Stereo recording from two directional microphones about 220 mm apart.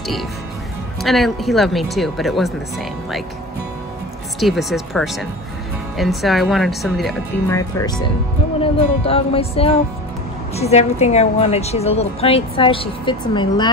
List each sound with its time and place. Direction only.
1.0 s speech: centre (ahead or behind)
4.4 s speech: centre (ahead or behind)
7.4 s speech: 15° left (ahead or behind)
9.0 s a woman's voice: 25° left (ahead or behind)